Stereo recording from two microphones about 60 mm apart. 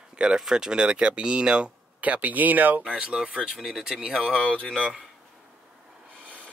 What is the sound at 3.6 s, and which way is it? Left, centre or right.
Speech, centre.